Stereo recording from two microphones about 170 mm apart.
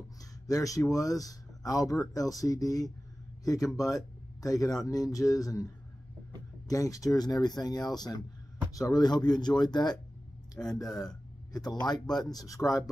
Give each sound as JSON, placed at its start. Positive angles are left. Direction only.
{"t": 0.5, "sound": "speech", "side_deg": 20}
{"t": 6.7, "sound": "speech", "side_deg": 20}
{"t": 10.6, "sound": "speech", "side_deg": 5}
{"t": 11.5, "sound": "speech", "side_deg": 25}